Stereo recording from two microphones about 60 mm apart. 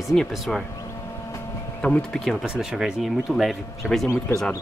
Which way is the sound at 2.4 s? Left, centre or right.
Centre.